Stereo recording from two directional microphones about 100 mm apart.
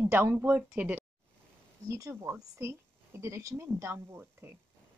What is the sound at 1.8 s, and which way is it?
Speech, 30° right (ahead or behind).